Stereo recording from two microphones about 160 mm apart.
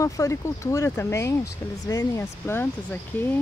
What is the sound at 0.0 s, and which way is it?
Speech, 20° left (ahead or behind).